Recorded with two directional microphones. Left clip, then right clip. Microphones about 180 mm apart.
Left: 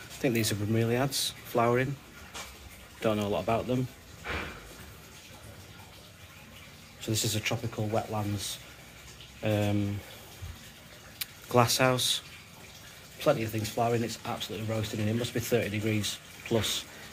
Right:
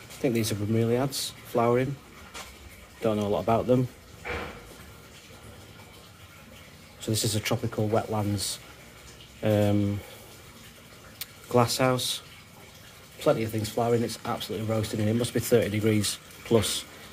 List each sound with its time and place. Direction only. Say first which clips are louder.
0.2 s speech: right 2 dB; 10° right (ahead or behind)
3.0 s speech: right 3 dB; 15° right (ahead or behind); by 3.8 s 30° right (ahead or behind)
7.0 s speech: right 2 dB; 25° right (ahead or behind)
11.1 s speech: right 1 dB; 10° right (ahead or behind)
13.2 s speech: right 2 dB; 20° right (ahead or behind)